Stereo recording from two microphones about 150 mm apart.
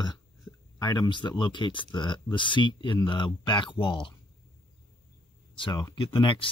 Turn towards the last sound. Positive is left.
turn(degrees=35)  # may be behind; listen again after turning